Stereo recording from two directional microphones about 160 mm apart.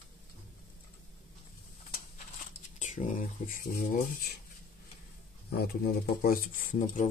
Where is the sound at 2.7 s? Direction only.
50° left (ahead or behind).